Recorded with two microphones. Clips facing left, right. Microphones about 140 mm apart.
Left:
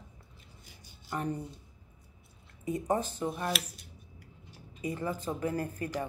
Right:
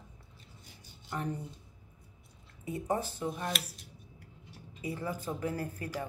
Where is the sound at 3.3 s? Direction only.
5° left (ahead or behind).